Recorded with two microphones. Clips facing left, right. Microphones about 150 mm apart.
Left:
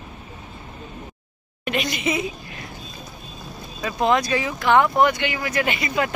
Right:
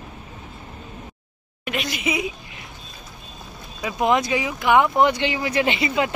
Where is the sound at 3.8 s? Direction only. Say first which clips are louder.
Even; 15° right (ahead or behind).